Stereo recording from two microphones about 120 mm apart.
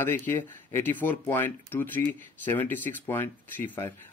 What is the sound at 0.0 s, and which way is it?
Speech, 15° left (ahead or behind).